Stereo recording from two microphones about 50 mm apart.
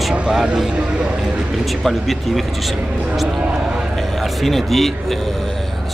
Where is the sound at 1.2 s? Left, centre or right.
Centre.